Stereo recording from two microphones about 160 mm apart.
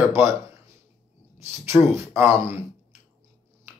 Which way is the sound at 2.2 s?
10° right (ahead or behind).